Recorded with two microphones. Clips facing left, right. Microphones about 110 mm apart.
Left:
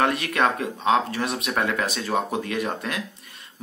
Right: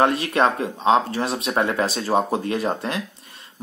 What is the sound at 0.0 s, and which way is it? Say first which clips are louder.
Speech: right 3 dB; 25° right (ahead or behind).